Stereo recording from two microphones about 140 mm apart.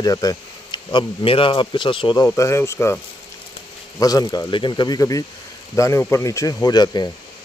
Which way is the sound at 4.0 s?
25° left (ahead or behind).